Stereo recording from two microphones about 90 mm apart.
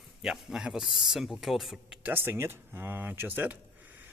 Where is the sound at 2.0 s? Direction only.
25° right (ahead or behind).